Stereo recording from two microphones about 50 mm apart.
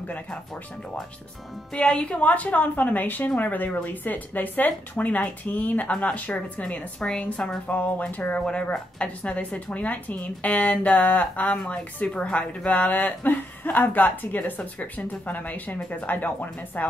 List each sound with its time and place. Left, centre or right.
1.7 s a woman's voice: centre
8.4 s a woman's voice: centre; by 16.8 s left